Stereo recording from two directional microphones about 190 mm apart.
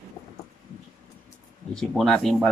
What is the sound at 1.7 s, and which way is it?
Speech, 5° left (ahead or behind).